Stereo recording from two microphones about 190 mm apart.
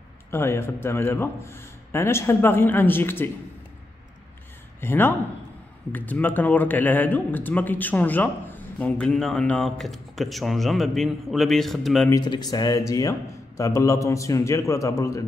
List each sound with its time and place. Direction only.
0.3 s a man's voice: 15° left (ahead or behind)
4.7 s a man's voice: 10° left (ahead or behind)
12.1 s a man's voice: 20° left (ahead or behind)